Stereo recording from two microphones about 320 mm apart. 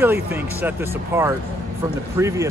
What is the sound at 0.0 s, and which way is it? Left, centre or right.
Speech, centre.